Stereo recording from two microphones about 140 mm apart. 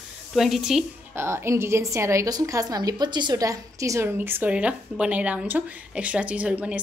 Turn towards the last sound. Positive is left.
turn(degrees=-10)  # may be behind; listen again after turning